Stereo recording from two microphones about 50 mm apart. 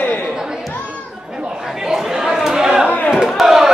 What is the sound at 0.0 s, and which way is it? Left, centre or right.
Chatter, left.